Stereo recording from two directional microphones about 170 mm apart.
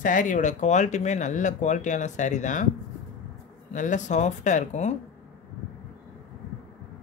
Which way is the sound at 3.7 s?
45° left (ahead or behind).